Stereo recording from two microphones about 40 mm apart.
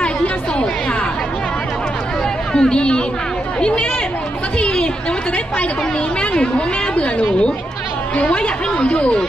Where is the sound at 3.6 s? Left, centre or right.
Left.